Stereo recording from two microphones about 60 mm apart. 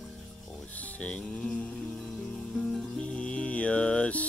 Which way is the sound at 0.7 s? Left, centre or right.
Left.